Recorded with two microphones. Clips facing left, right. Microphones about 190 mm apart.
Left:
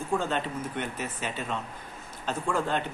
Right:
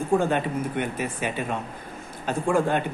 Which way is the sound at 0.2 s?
10° right (ahead or behind).